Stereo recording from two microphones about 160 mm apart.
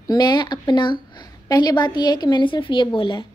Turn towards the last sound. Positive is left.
turn(degrees=30)  # may be behind; listen again after turning